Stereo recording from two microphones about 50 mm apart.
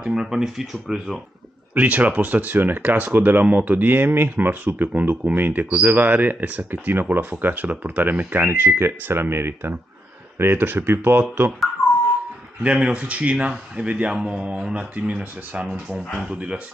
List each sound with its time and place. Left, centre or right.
0.0 s speech: centre
1.8 s speech: right
12.6 s speech: right
14.1 s speech: centre